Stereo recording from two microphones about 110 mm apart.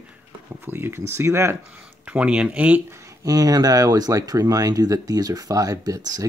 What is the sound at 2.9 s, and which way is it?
Speech, 25° right (ahead or behind).